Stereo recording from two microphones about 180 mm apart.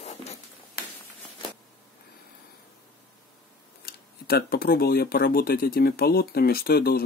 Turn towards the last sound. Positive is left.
turn(degrees=60)  # may be behind; listen again after turning